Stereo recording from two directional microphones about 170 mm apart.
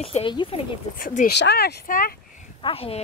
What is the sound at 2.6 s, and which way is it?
Speech, 35° left (ahead or behind).